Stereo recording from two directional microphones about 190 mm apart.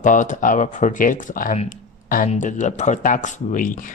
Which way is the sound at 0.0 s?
40° left (ahead or behind).